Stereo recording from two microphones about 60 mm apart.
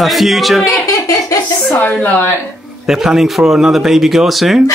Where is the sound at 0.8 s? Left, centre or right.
Left.